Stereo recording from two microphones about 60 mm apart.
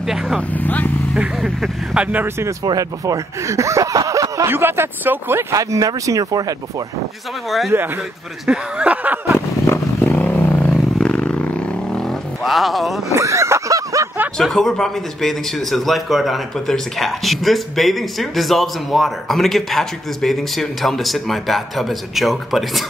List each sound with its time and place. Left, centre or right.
0.0 s speech: centre
0.5 s speech: left
1.1 s speech: centre
2.7 s speech: right
4.5 s speech: right
5.5 s speech: right
7.7 s speech: right
8.5 s speech: centre
8.9 s a sound: right
10.0 s a sound: left
11.0 s a sound: centre
12.4 s speech: centre
13.1 s a sound: right
14.4 s speech: centre